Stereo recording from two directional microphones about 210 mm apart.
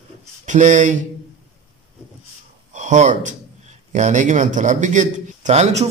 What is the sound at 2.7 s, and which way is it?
A man's voice, 35° right (ahead or behind).